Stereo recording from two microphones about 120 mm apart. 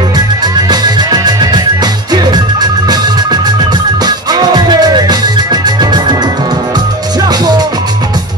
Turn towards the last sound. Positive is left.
turn(degrees=-35)  # may be behind; listen again after turning